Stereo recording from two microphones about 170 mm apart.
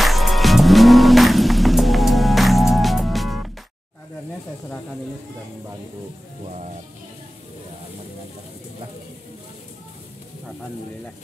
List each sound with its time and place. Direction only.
0.0 s music: centre (ahead or behind)
6.5 s music: 45° right (ahead or behind)